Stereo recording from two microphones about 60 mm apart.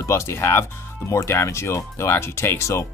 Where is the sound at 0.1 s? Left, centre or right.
Left.